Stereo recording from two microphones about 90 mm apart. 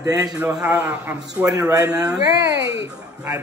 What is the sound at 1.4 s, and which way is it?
A woman's voice, 40° right (ahead or behind).